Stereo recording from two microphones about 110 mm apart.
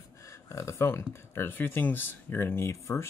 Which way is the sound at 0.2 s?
25° left (ahead or behind).